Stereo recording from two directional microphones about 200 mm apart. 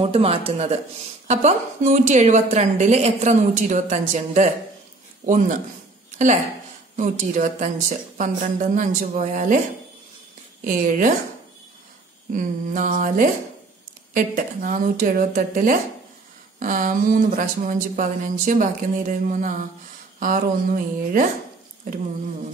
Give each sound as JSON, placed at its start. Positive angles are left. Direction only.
{"t": 0.0, "sound": "a woman's voice", "side_deg": -30}
{"t": 10.6, "sound": "a woman's voice", "side_deg": -45}
{"t": 12.3, "sound": "a woman's voice", "side_deg": -40}